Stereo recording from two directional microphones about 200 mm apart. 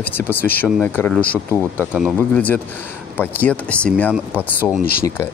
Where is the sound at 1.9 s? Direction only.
5° right (ahead or behind).